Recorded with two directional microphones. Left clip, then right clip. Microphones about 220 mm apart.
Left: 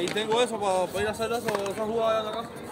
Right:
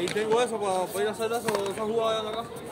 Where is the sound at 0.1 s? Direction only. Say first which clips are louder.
Right 1 dB; 35° left (ahead or behind).